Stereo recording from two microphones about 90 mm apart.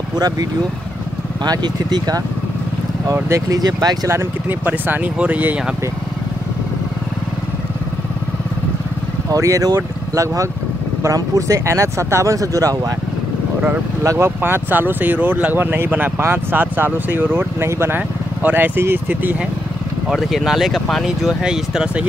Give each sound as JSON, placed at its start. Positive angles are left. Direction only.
{"t": 1.4, "sound": "speech", "side_deg": -55}
{"t": 3.3, "sound": "speech", "side_deg": -35}
{"t": 4.5, "sound": "speech", "side_deg": -20}
{"t": 9.3, "sound": "speech", "side_deg": -40}
{"t": 14.0, "sound": "speech", "side_deg": -30}
{"t": 20.1, "sound": "speech", "side_deg": 0}